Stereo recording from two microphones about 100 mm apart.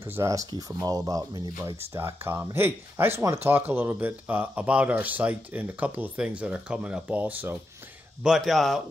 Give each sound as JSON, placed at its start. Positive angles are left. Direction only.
{"t": 0.0, "sound": "speech", "side_deg": -25}
{"t": 2.0, "sound": "speech", "side_deg": -25}
{"t": 8.2, "sound": "speech", "side_deg": -5}